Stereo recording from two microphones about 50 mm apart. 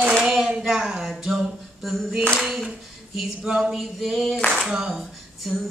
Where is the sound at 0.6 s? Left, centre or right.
Centre.